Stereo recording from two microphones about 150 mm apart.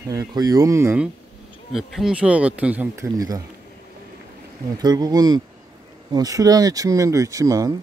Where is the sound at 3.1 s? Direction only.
25° right (ahead or behind).